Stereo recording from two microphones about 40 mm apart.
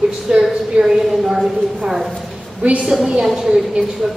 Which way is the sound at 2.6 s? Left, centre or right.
Right.